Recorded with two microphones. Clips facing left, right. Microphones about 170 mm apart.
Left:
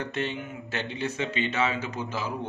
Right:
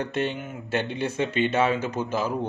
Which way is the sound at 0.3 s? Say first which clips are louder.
Right 5 dB; 55° right (ahead or behind).